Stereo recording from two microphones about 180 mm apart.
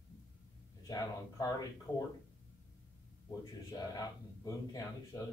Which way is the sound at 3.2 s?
20° left (ahead or behind).